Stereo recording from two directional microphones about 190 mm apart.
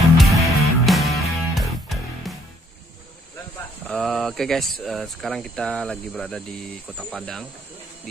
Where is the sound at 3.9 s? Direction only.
Centre (ahead or behind).